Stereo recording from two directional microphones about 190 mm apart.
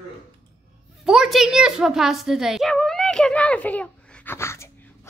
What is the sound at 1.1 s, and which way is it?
A child's voice, centre (ahead or behind).